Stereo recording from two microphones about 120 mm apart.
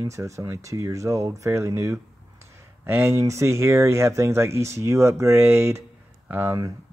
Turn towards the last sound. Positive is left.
turn(degrees=-15)  # may be behind; listen again after turning